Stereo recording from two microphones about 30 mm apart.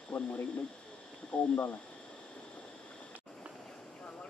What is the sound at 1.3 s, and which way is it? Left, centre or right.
Speech, left.